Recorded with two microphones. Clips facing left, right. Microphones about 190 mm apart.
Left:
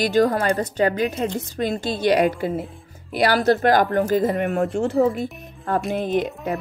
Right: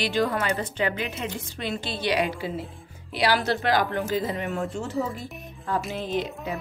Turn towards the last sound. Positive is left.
turn(degrees=55)  # may be behind; listen again after turning